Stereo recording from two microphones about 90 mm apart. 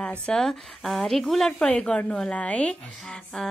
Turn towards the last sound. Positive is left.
turn(degrees=5)  # may be behind; listen again after turning